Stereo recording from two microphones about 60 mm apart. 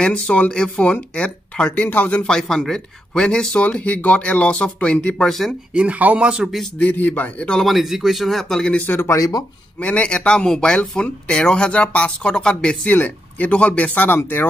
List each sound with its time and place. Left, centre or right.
0.0 s speech: centre
2.2 s speech: centre
5.7 s speech: right
6.2 s a man's voice: centre
6.8 s speech: left
7.6 s speech: centre
8.8 s speech: left
9.1 s speech: left
9.8 s speech: centre
12.8 s speech: left
14.0 s speech: left